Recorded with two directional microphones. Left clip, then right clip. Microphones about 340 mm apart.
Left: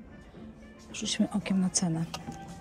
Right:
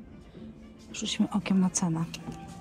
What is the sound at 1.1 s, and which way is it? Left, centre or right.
Speech, centre.